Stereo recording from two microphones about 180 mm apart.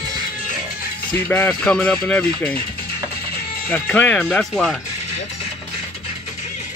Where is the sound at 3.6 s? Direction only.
10° left (ahead or behind).